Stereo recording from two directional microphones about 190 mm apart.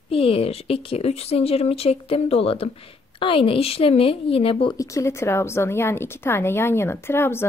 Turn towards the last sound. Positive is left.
turn(degrees=10)  # may be behind; listen again after turning